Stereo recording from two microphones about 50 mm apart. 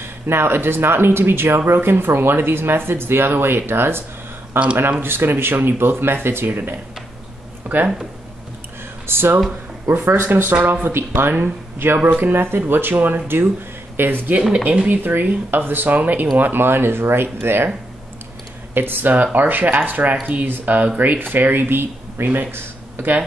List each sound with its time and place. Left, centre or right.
0.0 s speech: right
9.0 s speech: right
11.0 s speech: right
11.3 s speech: right
14.5 s speech: right
14.9 s speech: right
18.7 s speech: right